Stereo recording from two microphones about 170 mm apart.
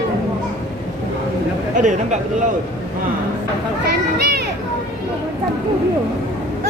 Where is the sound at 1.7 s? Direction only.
45° right (ahead or behind).